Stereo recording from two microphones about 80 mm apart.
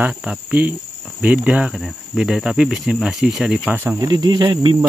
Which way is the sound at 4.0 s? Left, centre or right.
Right.